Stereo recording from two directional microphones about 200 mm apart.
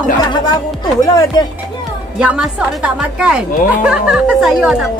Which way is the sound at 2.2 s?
5° right (ahead or behind).